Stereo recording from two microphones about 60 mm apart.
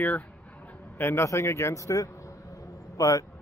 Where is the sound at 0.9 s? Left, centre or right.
Left.